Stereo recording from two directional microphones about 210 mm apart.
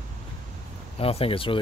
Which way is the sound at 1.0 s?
25° left (ahead or behind).